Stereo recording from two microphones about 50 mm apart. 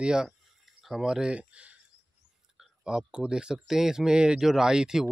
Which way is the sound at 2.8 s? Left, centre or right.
Centre.